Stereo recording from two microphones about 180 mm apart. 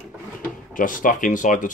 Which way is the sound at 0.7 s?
50° left (ahead or behind).